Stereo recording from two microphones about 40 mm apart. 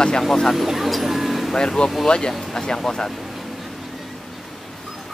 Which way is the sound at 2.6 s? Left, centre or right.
Centre.